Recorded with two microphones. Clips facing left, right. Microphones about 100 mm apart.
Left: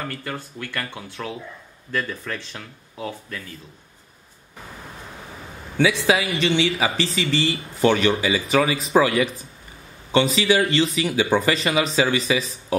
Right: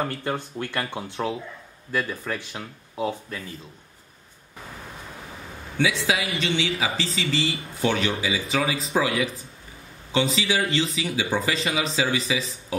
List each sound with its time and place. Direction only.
0.0 s speech: 25° right (ahead or behind)
5.8 s a man's voice: 65° left (ahead or behind)
6.3 s speech: 90° left
6.8 s speech: 70° left (ahead or behind)